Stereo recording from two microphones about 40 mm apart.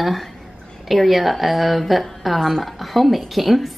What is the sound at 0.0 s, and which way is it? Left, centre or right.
A woman's voice, centre.